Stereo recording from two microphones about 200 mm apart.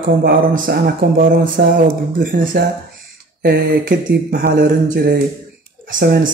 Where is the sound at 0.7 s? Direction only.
50° right (ahead or behind).